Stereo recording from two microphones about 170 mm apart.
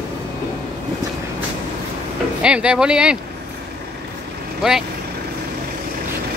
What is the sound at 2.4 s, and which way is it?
Speech, 5° right (ahead or behind).